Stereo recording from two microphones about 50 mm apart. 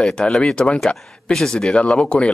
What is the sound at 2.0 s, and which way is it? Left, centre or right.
Speech, left.